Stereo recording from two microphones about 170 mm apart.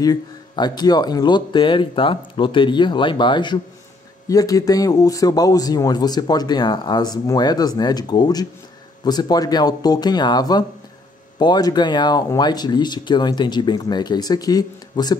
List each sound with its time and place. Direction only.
0.0 s a man's voice: 25° left (ahead or behind)